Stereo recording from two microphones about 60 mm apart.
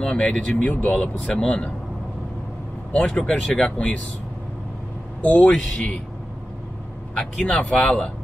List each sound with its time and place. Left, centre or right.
0.0 s speech: centre
3.0 s speech: centre
3.5 s speech: left
5.2 s speech: left
7.2 s speech: centre